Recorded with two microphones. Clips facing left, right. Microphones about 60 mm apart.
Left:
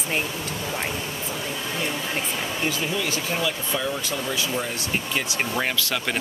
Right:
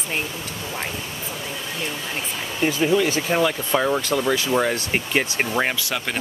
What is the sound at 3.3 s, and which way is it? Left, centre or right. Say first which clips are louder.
Speech: right 7 dB; right.